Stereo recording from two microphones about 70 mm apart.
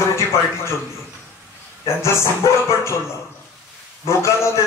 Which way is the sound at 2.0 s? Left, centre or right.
Left.